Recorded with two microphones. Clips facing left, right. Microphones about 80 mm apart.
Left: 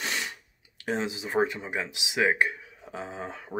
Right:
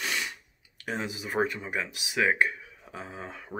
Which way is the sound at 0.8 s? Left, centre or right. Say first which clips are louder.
Left 3 dB; left.